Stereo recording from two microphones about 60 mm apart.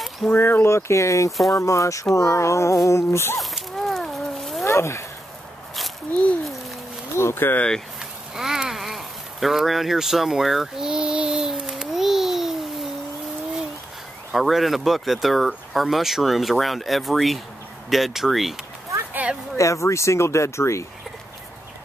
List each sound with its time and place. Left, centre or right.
0.3 s speech: left
0.7 s speech: left
2.9 s a sound: left
3.3 s a sound: centre
4.6 s speech: left
7.2 s speech: left
8.4 s a sound: centre
14.3 s speech: centre
19.5 s speech: left